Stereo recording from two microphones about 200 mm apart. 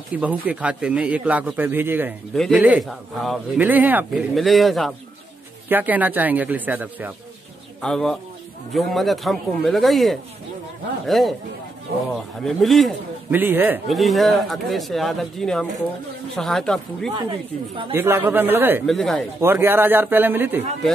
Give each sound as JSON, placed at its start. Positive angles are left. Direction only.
{"t": 0.1, "sound": "a man's voice", "side_deg": -5}
{"t": 2.3, "sound": "a man's voice", "side_deg": 0}
{"t": 7.8, "sound": "a man's voice", "side_deg": 0}
{"t": 12.4, "sound": "a man's voice", "side_deg": 0}
{"t": 17.1, "sound": "a woman's voice", "side_deg": -25}
{"t": 17.9, "sound": "a man's voice", "side_deg": -10}
{"t": 18.9, "sound": "a man's voice", "side_deg": 0}
{"t": 19.4, "sound": "a man's voice", "side_deg": -10}